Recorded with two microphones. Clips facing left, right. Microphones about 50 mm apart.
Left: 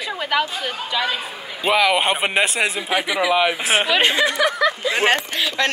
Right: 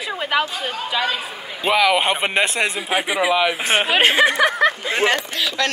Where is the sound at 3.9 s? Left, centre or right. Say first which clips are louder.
Right 5 dB; right.